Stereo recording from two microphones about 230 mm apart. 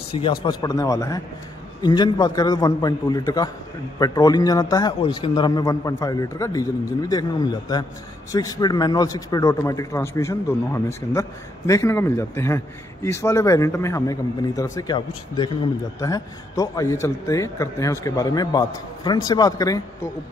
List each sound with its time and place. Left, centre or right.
0.1 s a man's voice: left